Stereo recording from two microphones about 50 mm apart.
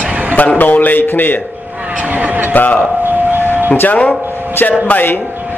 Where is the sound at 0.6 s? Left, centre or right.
Left.